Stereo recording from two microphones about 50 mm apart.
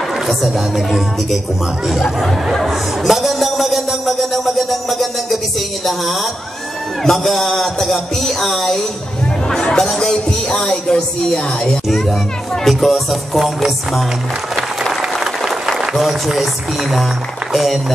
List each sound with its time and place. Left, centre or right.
0.3 s speech: centre
2.5 s music: centre
4.2 s speech: centre
7.0 s speech: centre
12.6 s speech: centre
14.5 s applause: centre
16.0 s speech: centre